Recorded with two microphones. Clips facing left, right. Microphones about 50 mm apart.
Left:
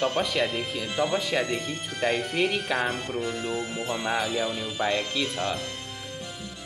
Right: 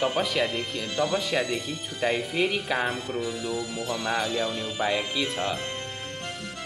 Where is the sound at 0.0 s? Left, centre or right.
Centre.